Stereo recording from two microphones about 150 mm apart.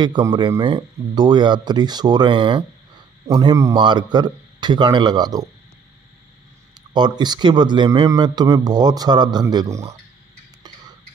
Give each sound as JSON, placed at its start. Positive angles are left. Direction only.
{"t": 0.0, "sound": "a man's voice", "side_deg": -30}
{"t": 6.9, "sound": "a man's voice", "side_deg": -30}